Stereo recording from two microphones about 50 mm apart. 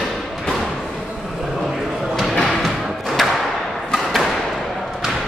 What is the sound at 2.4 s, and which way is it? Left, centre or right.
Music, centre.